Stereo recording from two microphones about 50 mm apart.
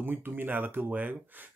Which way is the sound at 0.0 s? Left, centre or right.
Right.